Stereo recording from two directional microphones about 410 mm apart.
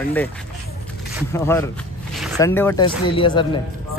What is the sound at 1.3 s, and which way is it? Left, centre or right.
Speech, centre.